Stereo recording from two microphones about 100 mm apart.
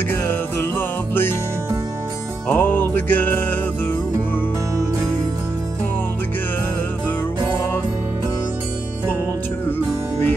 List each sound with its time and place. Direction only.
0.1 s music: 20° left (ahead or behind)
2.4 s music: 20° left (ahead or behind)